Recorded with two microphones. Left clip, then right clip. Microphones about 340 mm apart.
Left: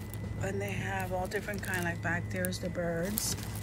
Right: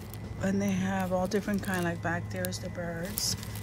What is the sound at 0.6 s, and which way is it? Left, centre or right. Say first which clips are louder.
Speech: right 2 dB; centre.